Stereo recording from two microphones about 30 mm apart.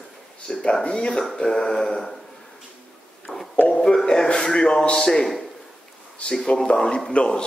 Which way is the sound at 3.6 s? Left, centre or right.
Left.